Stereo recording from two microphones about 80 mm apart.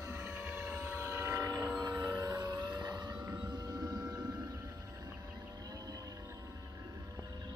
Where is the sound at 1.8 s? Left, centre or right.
Right.